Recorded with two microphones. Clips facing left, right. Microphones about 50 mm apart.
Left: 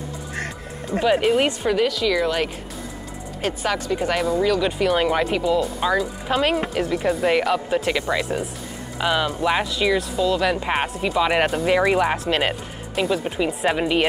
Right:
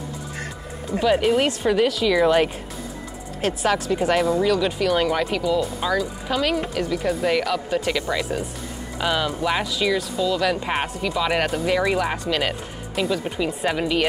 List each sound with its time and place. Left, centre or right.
0.9 s speech: centre
12.9 s speech: centre